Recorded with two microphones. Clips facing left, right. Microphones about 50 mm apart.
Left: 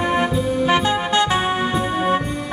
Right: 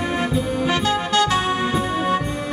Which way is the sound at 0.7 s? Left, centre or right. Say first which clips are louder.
Left 2 dB; left.